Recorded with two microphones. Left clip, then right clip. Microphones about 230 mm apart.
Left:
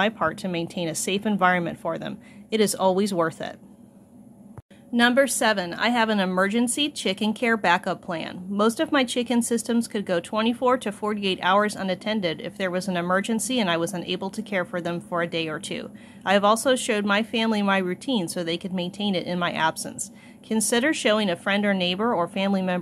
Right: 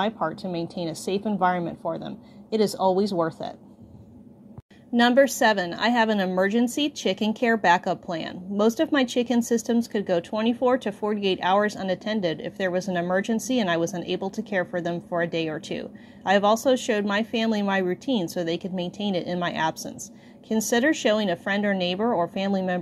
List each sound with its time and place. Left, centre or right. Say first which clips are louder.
0.0 s a woman's voice: left 3 dB; centre
2.7 s speech: even; left
3.0 s a woman's voice: left 1 dB; centre
4.9 s a woman's voice: right 1 dB; centre